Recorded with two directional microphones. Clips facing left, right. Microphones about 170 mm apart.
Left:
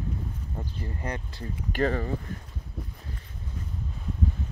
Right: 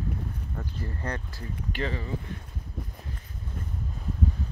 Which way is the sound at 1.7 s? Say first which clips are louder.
Left 6 dB; 45° left (ahead or behind).